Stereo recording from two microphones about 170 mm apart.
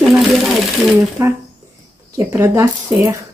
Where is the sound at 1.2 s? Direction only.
15° right (ahead or behind).